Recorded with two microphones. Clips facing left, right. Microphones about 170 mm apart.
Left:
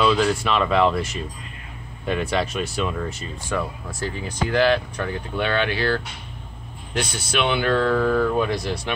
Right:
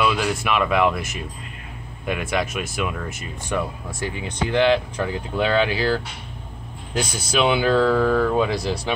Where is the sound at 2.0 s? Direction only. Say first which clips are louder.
Left 1 dB; 10° right (ahead or behind).